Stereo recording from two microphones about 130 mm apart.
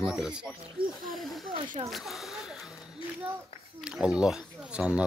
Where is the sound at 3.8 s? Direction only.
5° right (ahead or behind).